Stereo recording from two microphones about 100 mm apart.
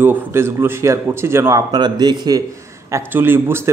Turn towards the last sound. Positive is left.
turn(degrees=-25)  # may be behind; listen again after turning